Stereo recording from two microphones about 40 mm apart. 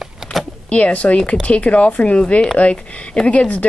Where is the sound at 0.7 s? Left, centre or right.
Left.